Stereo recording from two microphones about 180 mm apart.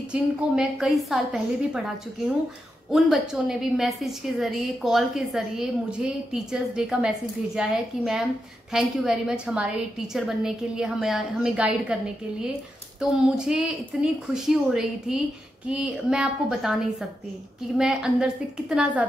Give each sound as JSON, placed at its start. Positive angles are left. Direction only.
{"t": 0.1, "sound": "a woman's voice", "side_deg": -5}